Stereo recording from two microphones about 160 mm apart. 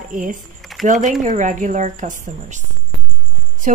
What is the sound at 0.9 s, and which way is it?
A woman's voice, 50° right (ahead or behind).